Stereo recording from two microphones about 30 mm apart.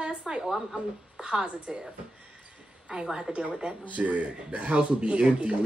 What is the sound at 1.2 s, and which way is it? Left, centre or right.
Speech, right.